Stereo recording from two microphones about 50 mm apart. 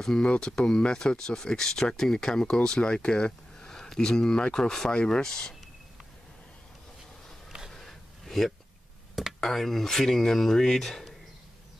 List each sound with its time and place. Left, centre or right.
0.0 s speech: centre
7.7 s a sound: centre
9.4 s speech: centre